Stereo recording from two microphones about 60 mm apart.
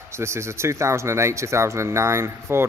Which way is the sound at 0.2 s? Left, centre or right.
Right.